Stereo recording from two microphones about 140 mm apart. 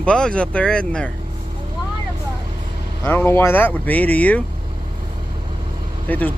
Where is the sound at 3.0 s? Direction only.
15° left (ahead or behind).